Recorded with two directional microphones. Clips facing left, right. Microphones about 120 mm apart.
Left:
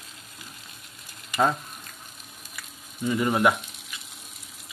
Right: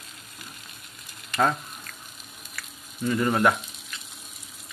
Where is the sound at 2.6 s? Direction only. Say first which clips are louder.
Right 2 dB; 20° left (ahead or behind).